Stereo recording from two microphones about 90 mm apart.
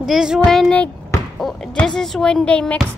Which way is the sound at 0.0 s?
5° right (ahead or behind).